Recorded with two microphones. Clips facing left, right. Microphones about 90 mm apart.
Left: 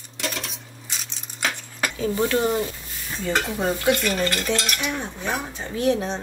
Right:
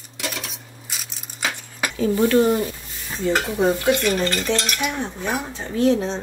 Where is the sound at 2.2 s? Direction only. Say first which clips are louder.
Right 6 dB; 20° left (ahead or behind).